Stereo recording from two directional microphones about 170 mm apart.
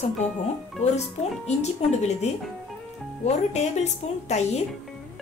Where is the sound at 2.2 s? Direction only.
40° left (ahead or behind).